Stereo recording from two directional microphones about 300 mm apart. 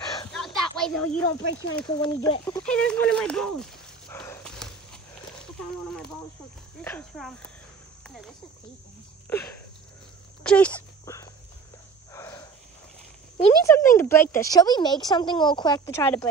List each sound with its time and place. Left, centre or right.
0.7 s speech: centre
1.4 s speech: left
1.9 s speech: centre
4.1 s dog: centre
6.8 s speech: centre
9.3 s speech: centre
10.4 s a sound: centre
13.4 s speech: centre